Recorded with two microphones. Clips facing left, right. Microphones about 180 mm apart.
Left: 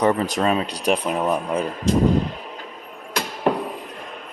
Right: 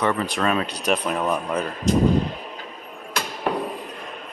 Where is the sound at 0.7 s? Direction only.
35° left (ahead or behind).